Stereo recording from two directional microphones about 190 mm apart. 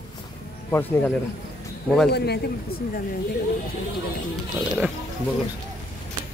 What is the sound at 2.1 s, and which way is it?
Speech, 60° left (ahead or behind).